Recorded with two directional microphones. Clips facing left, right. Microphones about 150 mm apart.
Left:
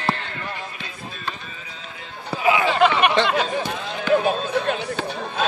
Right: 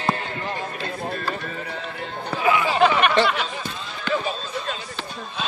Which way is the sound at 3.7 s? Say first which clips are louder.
Left 8 dB; 60° left (ahead or behind).